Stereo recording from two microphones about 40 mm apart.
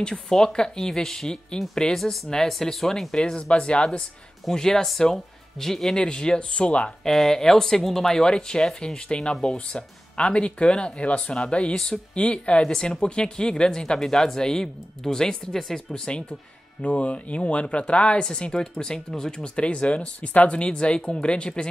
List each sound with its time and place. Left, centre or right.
0.0 s speech: left
2.0 s speech: centre
3.1 s speech: centre
4.5 s speech: centre
5.9 s speech: left
7.1 s speech: centre; by 11.7 s left
11.7 s speech: centre
12.1 s speech: left
12.7 s speech: centre
16.1 s speech: left